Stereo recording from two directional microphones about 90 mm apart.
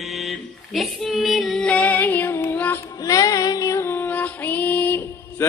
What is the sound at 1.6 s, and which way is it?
Music, 15° left (ahead or behind).